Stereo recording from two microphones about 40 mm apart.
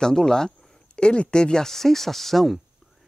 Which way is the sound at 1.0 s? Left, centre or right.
Left.